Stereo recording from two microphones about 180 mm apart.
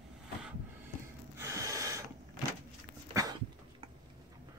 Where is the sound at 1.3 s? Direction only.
15° right (ahead or behind).